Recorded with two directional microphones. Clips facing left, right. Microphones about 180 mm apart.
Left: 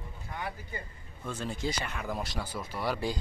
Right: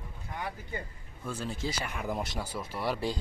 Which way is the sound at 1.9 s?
15° right (ahead or behind).